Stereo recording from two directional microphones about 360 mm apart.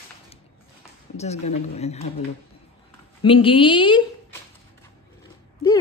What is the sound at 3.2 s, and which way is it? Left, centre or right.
Speech, centre.